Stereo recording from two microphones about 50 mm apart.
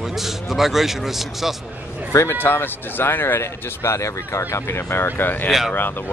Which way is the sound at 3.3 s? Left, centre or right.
Left.